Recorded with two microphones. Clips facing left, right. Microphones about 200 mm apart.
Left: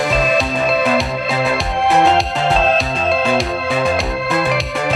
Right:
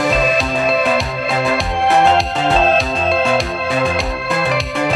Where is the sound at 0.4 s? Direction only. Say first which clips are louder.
Even; centre (ahead or behind).